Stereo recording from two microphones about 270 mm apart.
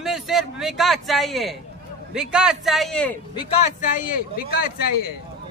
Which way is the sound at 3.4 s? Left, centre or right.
Left.